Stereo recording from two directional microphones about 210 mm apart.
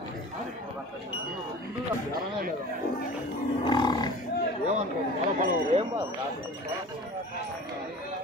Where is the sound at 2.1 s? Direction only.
45° right (ahead or behind).